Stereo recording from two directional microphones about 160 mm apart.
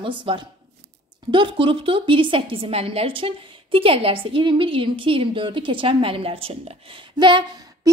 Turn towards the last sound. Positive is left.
turn(degrees=-30)  # may be behind; listen again after turning